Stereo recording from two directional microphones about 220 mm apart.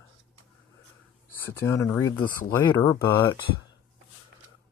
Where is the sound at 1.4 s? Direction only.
10° left (ahead or behind).